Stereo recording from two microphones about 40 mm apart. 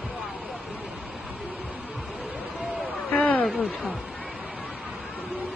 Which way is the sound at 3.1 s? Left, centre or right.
Left.